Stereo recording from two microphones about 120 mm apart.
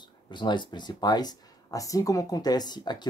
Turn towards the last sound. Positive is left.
turn(degrees=35)  # may be behind; listen again after turning